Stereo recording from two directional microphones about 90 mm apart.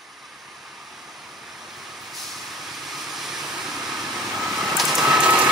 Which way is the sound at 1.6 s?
Centre (ahead or behind).